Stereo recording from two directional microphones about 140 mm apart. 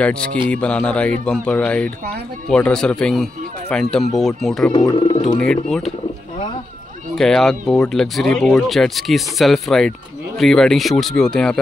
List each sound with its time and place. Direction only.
0.0 s a man's voice: 10° left (ahead or behind)
7.2 s speech: 5° left (ahead or behind)